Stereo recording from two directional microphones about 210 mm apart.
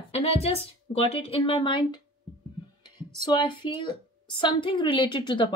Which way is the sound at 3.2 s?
20° left (ahead or behind).